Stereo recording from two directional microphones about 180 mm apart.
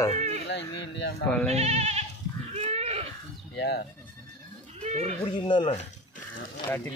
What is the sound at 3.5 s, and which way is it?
Speech, 70° left (ahead or behind).